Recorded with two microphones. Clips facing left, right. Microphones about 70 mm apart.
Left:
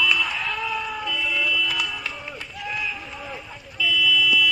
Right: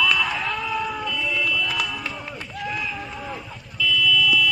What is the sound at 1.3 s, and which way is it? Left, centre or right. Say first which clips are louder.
Music: even; centre.